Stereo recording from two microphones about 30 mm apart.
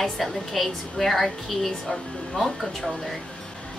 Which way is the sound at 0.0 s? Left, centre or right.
Centre.